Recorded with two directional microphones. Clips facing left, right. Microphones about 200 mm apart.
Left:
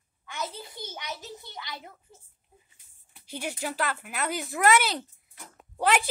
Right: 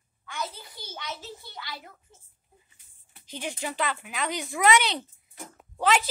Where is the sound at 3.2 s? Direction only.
10° left (ahead or behind).